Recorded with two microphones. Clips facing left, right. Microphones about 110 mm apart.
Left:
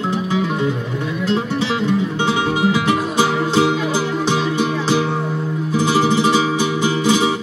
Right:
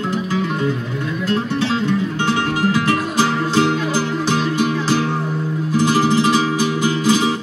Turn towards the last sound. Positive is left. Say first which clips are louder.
# even
turn(degrees=15)  # may be behind; listen again after turning